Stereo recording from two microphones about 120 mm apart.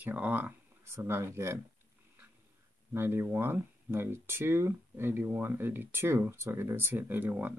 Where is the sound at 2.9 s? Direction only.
20° right (ahead or behind).